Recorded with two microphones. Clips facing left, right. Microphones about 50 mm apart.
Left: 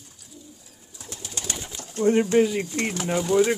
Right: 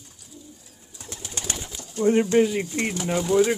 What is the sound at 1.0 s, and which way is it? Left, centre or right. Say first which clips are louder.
Bird: right 1 dB; right.